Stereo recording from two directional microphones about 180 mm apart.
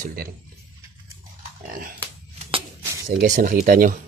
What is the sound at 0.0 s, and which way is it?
Speech, 55° right (ahead or behind).